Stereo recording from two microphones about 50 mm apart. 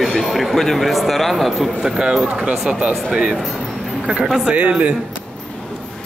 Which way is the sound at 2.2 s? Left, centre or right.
Centre.